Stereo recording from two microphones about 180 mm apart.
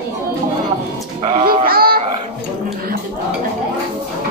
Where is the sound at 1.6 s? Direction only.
55° right (ahead or behind).